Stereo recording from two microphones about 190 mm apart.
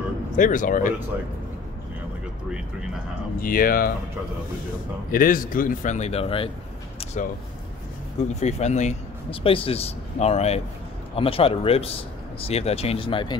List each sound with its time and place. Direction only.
0.4 s speech: 45° left (ahead or behind)
3.3 s speech: 50° left (ahead or behind)
5.1 s speech: 45° left (ahead or behind); by 6.5 s 30° left (ahead or behind)
8.4 s speech: 35° left (ahead or behind)